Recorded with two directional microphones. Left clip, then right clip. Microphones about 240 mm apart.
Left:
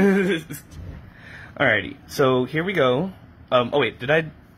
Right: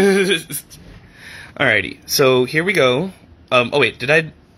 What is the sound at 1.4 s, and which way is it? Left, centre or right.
Speech, right.